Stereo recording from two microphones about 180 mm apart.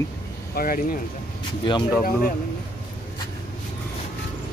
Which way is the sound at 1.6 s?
25° left (ahead or behind).